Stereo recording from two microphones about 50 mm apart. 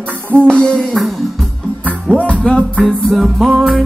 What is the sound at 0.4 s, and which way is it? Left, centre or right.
Music, centre.